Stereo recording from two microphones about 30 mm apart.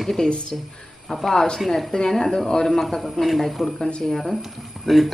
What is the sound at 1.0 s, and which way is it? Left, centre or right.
Speech, centre.